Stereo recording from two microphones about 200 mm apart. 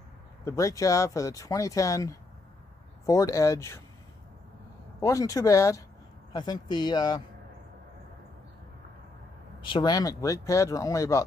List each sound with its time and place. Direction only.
0.5 s speech: 15° left (ahead or behind)
5.0 s speech: 15° left (ahead or behind)
9.6 s speech: 25° left (ahead or behind)